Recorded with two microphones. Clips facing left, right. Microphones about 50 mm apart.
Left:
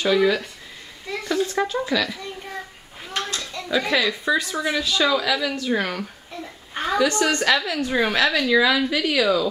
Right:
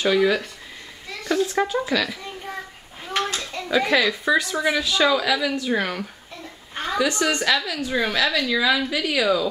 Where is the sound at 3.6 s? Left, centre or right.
Centre.